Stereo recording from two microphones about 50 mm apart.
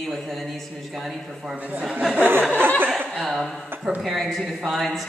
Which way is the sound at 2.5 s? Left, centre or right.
Right.